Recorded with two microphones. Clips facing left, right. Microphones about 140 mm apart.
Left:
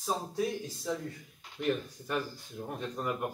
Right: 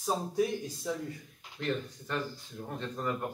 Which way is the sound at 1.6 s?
10° left (ahead or behind).